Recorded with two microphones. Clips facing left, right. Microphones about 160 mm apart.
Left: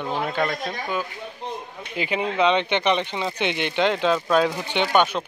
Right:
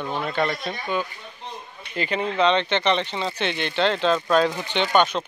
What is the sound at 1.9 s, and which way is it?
Speech, 10° left (ahead or behind).